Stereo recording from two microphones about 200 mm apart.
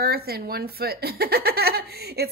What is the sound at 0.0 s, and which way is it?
Speech, 50° right (ahead or behind).